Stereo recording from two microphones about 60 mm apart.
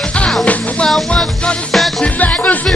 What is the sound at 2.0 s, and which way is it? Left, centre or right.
Music, left.